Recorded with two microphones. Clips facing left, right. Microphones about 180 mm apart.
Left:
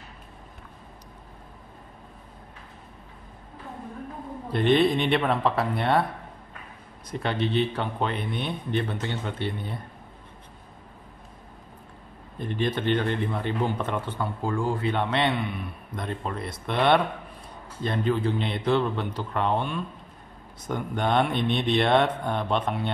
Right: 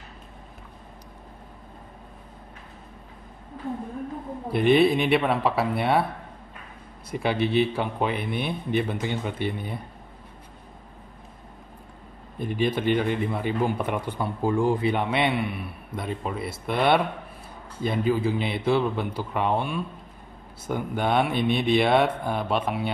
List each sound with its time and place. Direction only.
4.5 s speech: 10° right (ahead or behind)
7.1 s speech: 10° right (ahead or behind)
12.4 s speech: 10° right (ahead or behind)